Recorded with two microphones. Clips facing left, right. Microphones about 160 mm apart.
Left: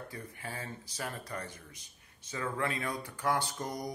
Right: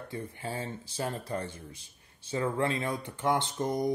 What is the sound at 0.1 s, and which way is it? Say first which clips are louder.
Speech: right 6 dB; 30° right (ahead or behind).